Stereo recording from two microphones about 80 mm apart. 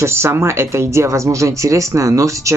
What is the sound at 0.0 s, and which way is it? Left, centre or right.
Speech, right.